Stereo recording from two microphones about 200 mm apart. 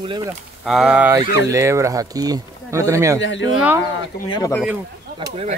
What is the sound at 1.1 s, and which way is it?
Speech, 15° right (ahead or behind).